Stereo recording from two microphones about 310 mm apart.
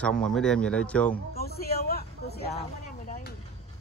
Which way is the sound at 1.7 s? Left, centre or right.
Left.